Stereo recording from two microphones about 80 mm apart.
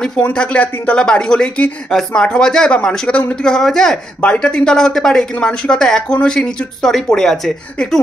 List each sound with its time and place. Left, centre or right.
0.0 s speech: centre